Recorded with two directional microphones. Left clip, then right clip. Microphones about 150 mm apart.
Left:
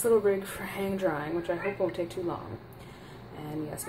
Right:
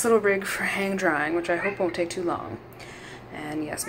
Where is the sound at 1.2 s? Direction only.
5° right (ahead or behind).